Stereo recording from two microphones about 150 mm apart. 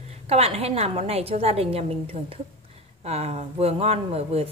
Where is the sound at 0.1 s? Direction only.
45° right (ahead or behind).